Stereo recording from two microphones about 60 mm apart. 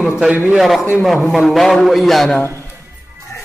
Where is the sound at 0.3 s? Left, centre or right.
Right.